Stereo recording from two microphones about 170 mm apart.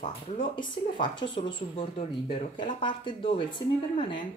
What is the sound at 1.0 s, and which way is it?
Speech, 30° left (ahead or behind).